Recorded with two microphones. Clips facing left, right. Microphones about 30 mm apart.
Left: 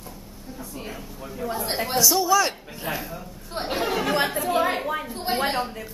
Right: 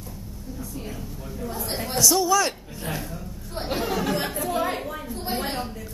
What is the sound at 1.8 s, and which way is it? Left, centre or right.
A man's voice, centre.